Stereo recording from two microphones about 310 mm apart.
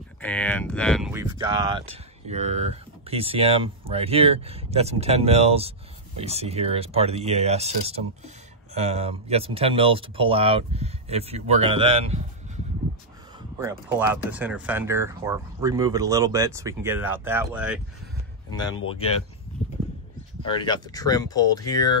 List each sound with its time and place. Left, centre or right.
0.2 s speech: centre
13.6 s speech: centre
18.5 s speech: centre
20.4 s speech: centre